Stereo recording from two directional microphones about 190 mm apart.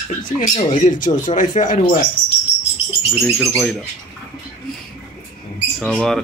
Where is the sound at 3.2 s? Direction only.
Centre (ahead or behind).